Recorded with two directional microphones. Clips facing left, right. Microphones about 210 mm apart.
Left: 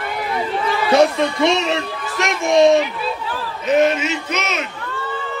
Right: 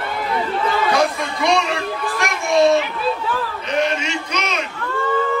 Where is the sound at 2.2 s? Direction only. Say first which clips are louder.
Left 3 dB; 20° left (ahead or behind).